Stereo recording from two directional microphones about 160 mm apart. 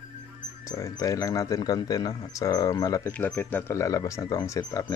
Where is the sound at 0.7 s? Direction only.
20° left (ahead or behind).